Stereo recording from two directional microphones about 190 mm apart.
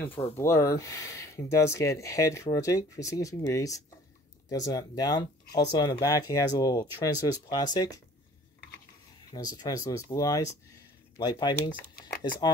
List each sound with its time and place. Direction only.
0.4 s speech: 15° left (ahead or behind)
9.3 s speech: 20° left (ahead or behind)